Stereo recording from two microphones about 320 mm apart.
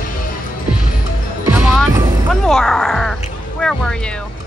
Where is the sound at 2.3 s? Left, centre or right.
Centre.